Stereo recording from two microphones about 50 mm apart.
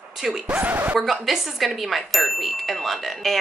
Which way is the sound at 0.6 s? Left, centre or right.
Right.